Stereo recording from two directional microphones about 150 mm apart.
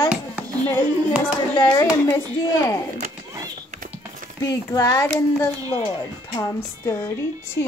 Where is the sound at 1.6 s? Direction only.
25° left (ahead or behind).